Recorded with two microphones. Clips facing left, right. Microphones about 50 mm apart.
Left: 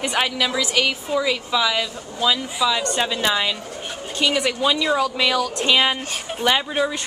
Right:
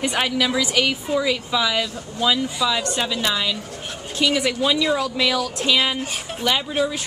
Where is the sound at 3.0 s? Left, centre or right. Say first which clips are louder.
Left 2 dB; centre.